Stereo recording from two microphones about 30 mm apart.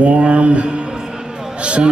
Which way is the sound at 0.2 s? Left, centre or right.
Right.